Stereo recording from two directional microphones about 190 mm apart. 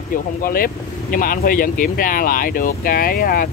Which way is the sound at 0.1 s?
50° left (ahead or behind).